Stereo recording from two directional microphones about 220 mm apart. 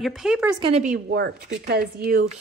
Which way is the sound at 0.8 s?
40° right (ahead or behind).